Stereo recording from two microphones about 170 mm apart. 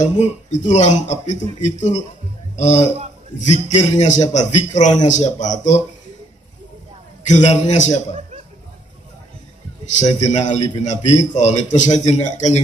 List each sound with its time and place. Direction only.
0.0 s a man's voice: 45° left (ahead or behind)
7.2 s a man's voice: 45° left (ahead or behind)
9.9 s a man's voice: 45° left (ahead or behind)